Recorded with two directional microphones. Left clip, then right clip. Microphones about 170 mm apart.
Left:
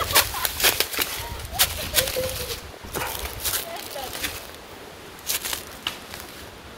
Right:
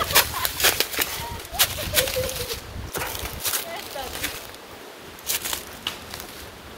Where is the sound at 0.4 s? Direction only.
20° left (ahead or behind).